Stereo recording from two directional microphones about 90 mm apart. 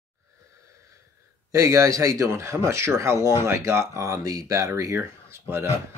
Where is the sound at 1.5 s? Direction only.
35° right (ahead or behind).